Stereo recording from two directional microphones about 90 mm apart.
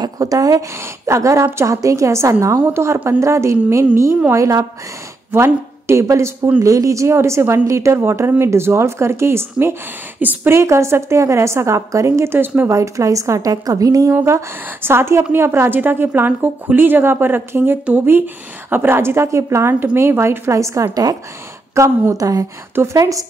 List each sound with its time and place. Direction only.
0.0 s a woman's voice: 40° right (ahead or behind); by 10.5 s 20° right (ahead or behind)
10.5 s a woman's voice: 30° right (ahead or behind)
12.3 s a woman's voice: 25° right (ahead or behind)
12.6 s a woman's voice: 35° right (ahead or behind)
14.1 s a woman's voice: 30° right (ahead or behind)